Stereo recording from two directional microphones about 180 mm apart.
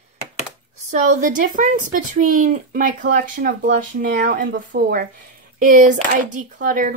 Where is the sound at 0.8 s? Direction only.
45° right (ahead or behind).